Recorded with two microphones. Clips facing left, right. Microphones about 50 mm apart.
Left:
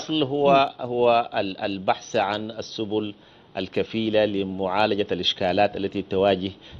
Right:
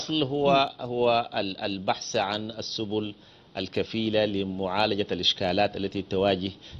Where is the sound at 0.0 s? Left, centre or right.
Centre.